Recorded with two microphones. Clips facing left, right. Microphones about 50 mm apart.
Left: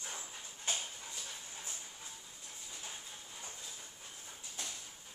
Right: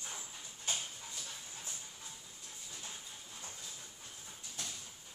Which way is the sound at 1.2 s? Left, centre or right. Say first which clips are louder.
Left 1 dB; centre.